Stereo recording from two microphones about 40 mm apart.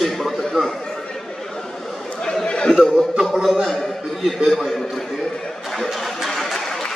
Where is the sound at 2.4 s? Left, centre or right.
Left.